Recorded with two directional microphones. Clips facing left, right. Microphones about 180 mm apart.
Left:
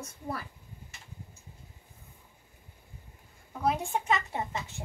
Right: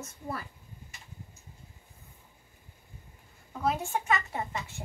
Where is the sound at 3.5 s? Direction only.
15° left (ahead or behind).